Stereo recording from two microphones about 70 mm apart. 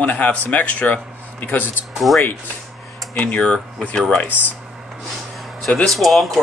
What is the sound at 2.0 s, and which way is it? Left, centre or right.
Speech, centre.